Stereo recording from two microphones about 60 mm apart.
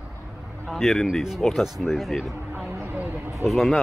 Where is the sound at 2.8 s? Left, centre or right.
Right.